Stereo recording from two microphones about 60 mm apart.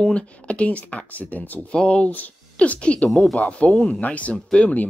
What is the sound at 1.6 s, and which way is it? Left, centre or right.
A woman's voice, centre.